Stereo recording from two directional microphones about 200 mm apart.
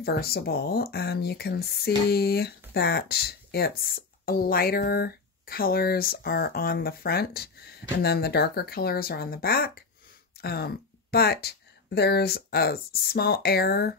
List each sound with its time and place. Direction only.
0.0 s speech: 50° left (ahead or behind)